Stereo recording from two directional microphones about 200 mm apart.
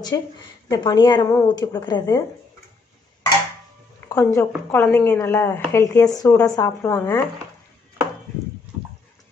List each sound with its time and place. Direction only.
0.7 s speech: 20° left (ahead or behind)
4.1 s speech: 15° left (ahead or behind)